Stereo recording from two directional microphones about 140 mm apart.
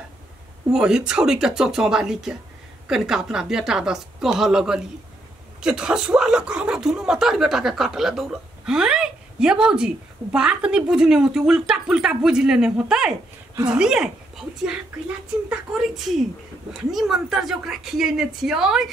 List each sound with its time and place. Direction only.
0.7 s speech: 5° right (ahead or behind)